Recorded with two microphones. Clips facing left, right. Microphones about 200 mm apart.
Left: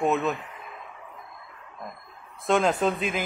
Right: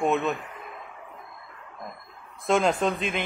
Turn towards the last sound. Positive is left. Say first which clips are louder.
# left 1 dB
turn(degrees=0)  # may be behind; listen again after turning